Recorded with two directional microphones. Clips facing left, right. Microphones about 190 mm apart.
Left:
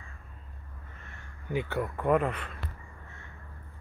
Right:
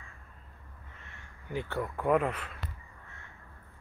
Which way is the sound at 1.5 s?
10° left (ahead or behind).